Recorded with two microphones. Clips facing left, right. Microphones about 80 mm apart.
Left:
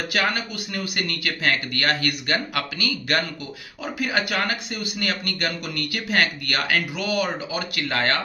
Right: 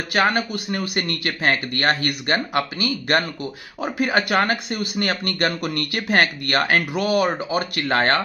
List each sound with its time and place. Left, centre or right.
0.1 s speech: right